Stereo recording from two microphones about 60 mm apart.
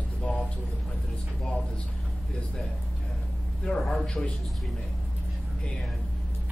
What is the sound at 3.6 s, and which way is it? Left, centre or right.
Speech, centre.